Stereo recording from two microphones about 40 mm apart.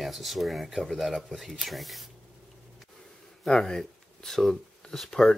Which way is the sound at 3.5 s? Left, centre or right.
Centre.